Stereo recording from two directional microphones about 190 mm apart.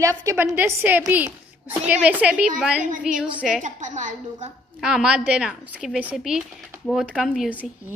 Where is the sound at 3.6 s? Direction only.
40° right (ahead or behind).